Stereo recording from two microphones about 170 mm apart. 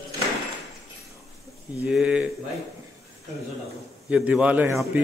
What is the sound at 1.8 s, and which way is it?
Speech, 5° right (ahead or behind).